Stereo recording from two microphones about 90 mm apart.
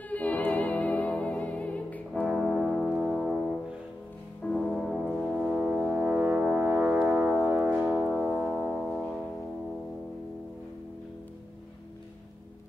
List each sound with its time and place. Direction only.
0.1 s music: 15° left (ahead or behind)
2.2 s brass instrument: 5° left (ahead or behind)
4.6 s music: centre (ahead or behind)
5.3 s brass instrument: 5° right (ahead or behind)
7.3 s music: 5° right (ahead or behind)